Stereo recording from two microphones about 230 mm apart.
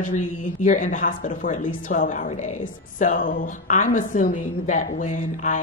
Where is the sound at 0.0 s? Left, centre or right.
Left.